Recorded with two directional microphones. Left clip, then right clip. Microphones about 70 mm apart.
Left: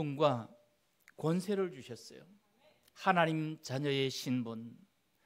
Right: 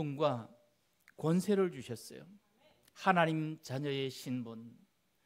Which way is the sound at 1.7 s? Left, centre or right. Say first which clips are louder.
Right 3 dB; right.